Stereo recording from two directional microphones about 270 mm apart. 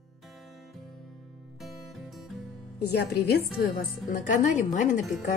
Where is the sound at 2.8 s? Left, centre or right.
Left.